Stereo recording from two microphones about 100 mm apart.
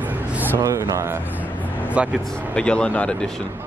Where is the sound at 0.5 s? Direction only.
30° right (ahead or behind).